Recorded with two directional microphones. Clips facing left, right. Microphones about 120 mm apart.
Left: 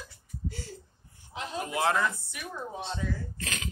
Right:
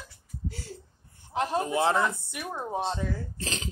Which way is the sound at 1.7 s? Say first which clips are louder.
Left 1 dB; 30° right (ahead or behind).